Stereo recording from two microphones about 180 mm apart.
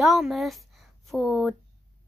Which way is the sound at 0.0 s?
Centre (ahead or behind).